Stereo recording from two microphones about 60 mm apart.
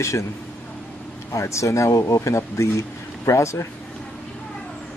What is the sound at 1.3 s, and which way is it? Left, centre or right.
Speech, left.